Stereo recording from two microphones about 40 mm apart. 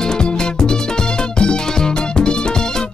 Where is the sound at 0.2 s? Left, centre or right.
Centre.